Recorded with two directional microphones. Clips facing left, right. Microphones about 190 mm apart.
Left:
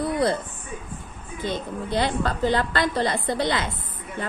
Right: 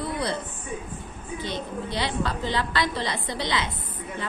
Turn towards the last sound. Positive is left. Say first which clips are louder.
# left 4 dB
turn(degrees=50)  # may be behind; listen again after turning